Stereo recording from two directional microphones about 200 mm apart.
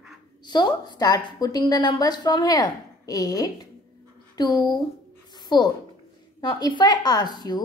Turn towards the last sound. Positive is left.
turn(degrees=20)  # may be behind; listen again after turning